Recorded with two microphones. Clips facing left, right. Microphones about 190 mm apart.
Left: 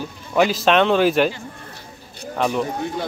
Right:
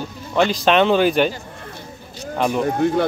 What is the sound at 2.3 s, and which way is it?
Speech, centre (ahead or behind).